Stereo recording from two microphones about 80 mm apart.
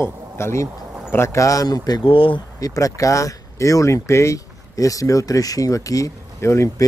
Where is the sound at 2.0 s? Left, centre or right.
Left.